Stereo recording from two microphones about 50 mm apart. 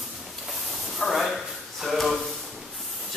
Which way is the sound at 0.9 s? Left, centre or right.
Centre.